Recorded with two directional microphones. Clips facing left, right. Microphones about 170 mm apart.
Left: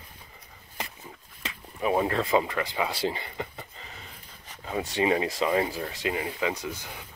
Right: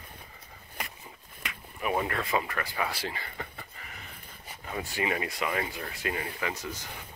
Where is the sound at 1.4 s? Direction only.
25° left (ahead or behind).